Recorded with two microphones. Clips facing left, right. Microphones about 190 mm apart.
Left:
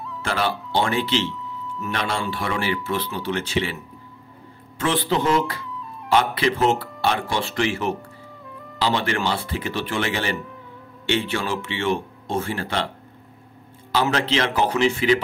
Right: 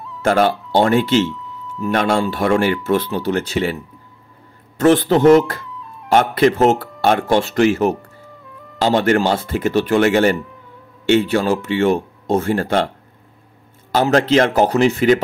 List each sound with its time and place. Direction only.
0.2 s speech: 45° right (ahead or behind)
4.7 s speech: 45° right (ahead or behind)
13.9 s speech: 45° right (ahead or behind)